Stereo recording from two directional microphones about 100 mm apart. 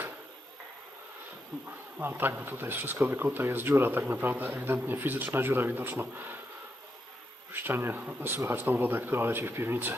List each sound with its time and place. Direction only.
1.7 s speech: 20° right (ahead or behind)
7.5 s speech: 20° right (ahead or behind)